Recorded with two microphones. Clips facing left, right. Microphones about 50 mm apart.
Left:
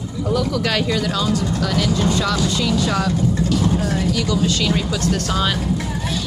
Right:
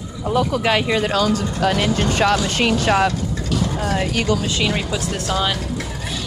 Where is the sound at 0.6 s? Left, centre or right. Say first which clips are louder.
Right 2 dB; right.